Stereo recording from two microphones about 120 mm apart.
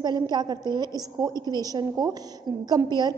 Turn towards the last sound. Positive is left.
turn(degrees=-35)  # may be behind; listen again after turning